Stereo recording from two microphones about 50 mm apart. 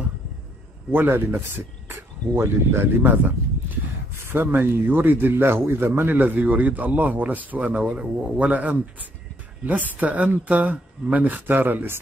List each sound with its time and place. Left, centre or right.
0.9 s a man's voice: right
3.1 s a sound: right
4.1 s a man's voice: right